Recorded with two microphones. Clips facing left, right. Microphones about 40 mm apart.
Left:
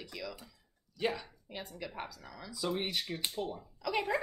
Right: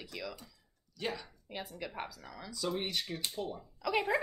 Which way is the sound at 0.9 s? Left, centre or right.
Centre.